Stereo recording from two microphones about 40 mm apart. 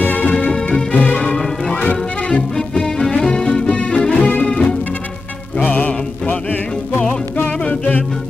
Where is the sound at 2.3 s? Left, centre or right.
Centre.